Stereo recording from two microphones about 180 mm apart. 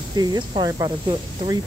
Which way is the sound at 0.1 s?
20° right (ahead or behind).